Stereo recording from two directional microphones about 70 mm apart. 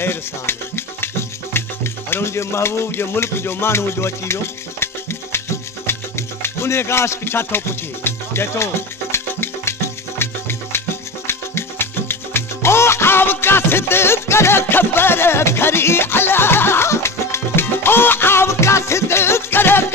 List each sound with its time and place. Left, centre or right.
0.0 s music: left